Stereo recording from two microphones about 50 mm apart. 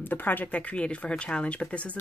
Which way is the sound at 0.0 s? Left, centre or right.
Left.